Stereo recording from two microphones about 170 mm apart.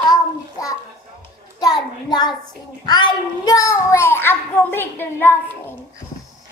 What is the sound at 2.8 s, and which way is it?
A child's voice, 25° left (ahead or behind).